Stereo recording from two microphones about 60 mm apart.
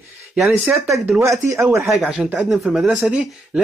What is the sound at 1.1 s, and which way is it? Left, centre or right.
Speech, right.